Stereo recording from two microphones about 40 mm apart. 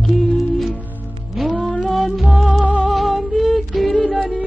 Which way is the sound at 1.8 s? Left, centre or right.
Centre.